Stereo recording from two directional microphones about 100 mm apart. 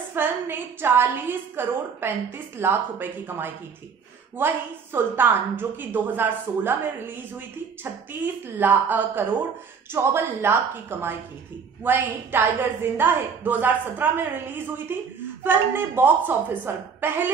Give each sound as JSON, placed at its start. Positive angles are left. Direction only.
{"t": 0.1, "sound": "a woman's voice", "side_deg": -20}